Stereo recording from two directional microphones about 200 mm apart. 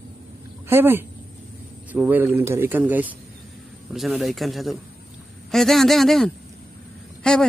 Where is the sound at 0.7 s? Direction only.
10° right (ahead or behind).